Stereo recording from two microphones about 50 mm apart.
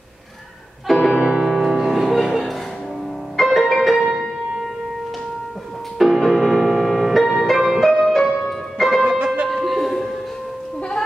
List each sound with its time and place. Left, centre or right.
0.8 s music: centre
3.9 s music: centre
5.9 s music: centre
9.2 s music: right
9.5 s music: centre